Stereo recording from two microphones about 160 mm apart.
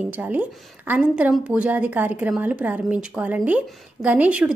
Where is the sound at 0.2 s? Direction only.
10° right (ahead or behind).